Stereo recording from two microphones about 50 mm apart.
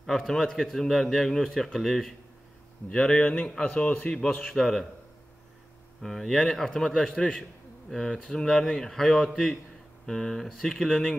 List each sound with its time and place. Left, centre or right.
0.0 s a man's voice: centre
2.9 s speech: centre
4.4 s a man's voice: centre
6.0 s a man's voice: centre